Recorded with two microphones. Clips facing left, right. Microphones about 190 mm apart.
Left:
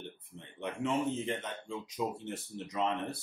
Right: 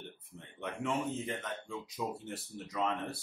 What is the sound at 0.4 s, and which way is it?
Speech, 15° left (ahead or behind).